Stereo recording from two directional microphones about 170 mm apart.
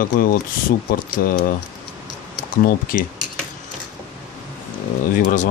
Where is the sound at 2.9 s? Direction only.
55° left (ahead or behind).